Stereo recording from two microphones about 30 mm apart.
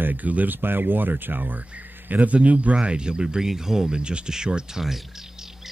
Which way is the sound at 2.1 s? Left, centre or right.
Right.